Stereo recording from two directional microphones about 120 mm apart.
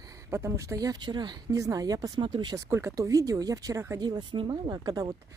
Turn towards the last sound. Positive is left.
turn(degrees=-35)  # may be behind; listen again after turning